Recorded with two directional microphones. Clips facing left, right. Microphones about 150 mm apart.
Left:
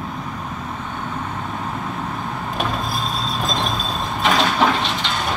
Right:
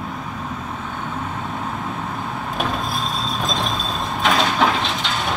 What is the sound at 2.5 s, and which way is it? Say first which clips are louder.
Vehicle: even; centre (ahead or behind).